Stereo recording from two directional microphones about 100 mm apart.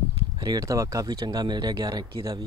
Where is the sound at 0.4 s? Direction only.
40° right (ahead or behind).